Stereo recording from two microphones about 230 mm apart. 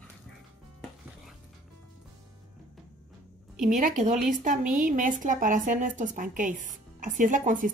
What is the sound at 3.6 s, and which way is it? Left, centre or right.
A woman's voice, right.